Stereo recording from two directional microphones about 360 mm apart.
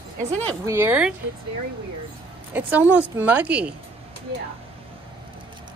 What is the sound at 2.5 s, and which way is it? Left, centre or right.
A woman's voice, centre.